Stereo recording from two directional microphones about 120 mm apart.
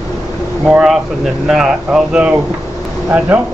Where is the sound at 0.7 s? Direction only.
Centre (ahead or behind).